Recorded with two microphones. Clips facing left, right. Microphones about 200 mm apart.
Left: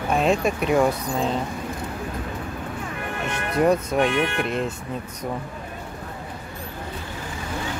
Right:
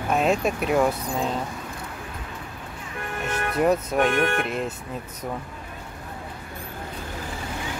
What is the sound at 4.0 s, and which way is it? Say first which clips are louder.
Speech: even; 50° right (ahead or behind).